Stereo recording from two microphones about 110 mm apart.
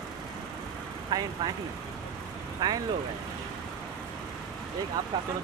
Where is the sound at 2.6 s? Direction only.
35° right (ahead or behind).